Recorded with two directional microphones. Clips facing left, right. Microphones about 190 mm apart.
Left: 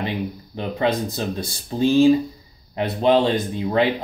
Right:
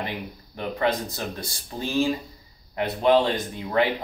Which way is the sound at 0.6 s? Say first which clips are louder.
Left 3 dB; 20° left (ahead or behind).